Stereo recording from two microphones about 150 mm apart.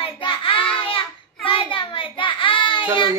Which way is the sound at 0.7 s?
35° left (ahead or behind).